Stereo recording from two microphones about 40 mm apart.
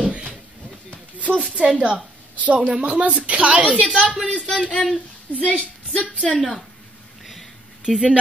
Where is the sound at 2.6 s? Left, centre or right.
Right.